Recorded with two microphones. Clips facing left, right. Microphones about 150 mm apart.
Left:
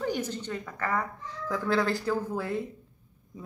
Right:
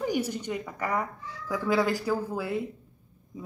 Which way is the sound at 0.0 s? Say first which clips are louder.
Right 2 dB; 10° right (ahead or behind).